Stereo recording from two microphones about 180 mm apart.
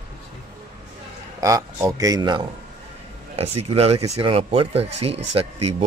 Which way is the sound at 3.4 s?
35° right (ahead or behind).